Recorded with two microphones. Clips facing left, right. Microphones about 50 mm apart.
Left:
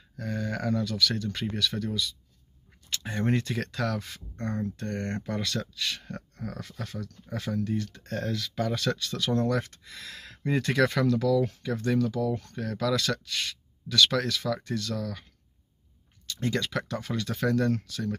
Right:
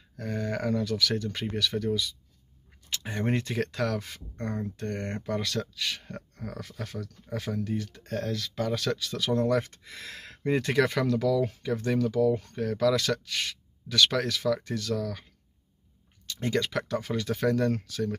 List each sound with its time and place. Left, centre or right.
0.2 s speech: right
1.7 s speech: centre
3.0 s speech: centre
5.2 s speech: centre
8.2 s speech: centre; by 10.5 s right
10.5 s speech: centre
16.3 s speech: right